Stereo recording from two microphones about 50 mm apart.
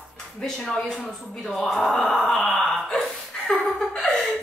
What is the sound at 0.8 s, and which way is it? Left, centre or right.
Speech, centre.